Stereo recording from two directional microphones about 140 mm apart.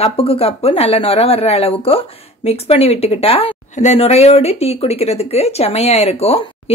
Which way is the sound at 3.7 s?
55° left (ahead or behind).